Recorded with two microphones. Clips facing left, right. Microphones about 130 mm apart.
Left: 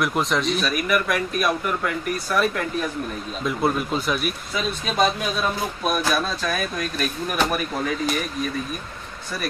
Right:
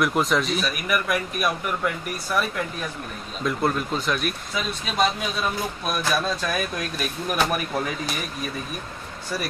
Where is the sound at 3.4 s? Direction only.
5° left (ahead or behind).